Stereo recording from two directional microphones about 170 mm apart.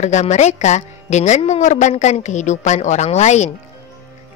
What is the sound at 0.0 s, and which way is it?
A woman's voice, 45° left (ahead or behind).